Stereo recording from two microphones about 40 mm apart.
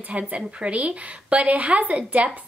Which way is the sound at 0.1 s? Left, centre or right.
Right.